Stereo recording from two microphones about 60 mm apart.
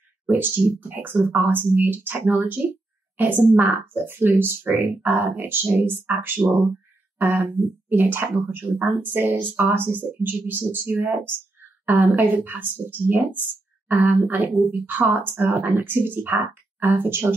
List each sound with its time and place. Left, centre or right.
0.7 s a woman's voice: right
7.2 s speech: right